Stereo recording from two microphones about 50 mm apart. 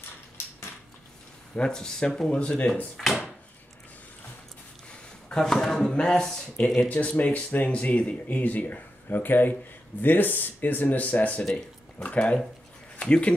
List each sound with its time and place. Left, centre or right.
1.5 s speech: centre
3.0 s drawer open or close: centre
5.3 s speech: centre
6.9 s speech: left